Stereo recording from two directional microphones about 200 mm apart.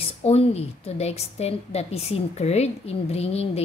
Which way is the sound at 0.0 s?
30° left (ahead or behind).